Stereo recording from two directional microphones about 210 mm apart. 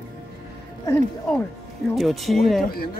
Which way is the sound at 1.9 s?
Centre (ahead or behind).